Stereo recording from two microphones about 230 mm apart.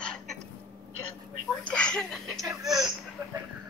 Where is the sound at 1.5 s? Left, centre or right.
Centre.